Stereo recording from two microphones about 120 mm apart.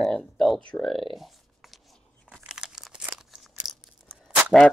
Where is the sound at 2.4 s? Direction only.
5° right (ahead or behind).